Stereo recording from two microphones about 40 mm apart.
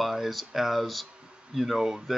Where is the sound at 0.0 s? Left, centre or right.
Centre.